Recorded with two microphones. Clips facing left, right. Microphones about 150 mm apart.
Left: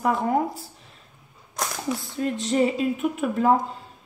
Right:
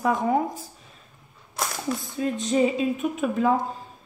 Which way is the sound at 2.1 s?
15° right (ahead or behind).